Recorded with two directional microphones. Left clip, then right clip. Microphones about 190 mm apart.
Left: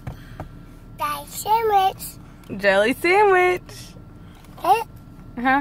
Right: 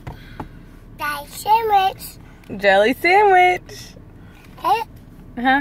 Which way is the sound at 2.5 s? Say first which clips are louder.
Right 3 dB; 15° left (ahead or behind).